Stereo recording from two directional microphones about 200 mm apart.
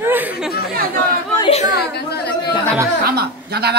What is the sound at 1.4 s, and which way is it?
Speech, 30° left (ahead or behind).